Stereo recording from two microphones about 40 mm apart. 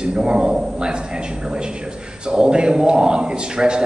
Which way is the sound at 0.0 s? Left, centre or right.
Right.